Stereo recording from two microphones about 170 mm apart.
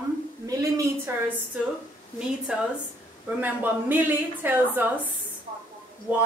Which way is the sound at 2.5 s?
5° right (ahead or behind).